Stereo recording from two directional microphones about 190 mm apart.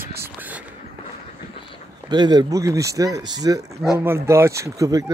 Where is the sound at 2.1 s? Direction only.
20° right (ahead or behind).